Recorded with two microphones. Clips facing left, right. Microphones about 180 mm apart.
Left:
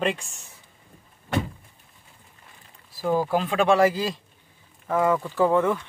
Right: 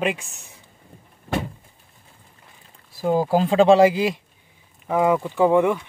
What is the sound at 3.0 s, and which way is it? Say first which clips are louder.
Speech: right 4 dB; 25° right (ahead or behind).